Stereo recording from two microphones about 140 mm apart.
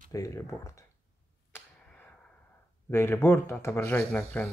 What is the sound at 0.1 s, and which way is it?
Speech, 20° left (ahead or behind).